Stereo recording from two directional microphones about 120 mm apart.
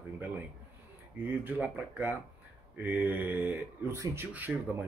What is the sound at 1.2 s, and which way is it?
Speech, 15° right (ahead or behind).